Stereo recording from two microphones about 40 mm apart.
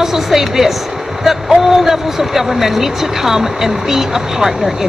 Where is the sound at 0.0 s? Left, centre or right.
Centre.